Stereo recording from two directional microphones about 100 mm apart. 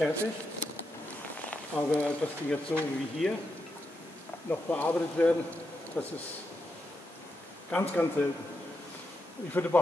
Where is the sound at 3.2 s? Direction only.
Centre (ahead or behind).